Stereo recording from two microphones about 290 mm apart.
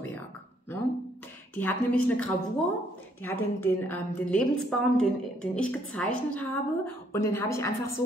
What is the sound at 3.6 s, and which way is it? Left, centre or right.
A woman's voice, centre.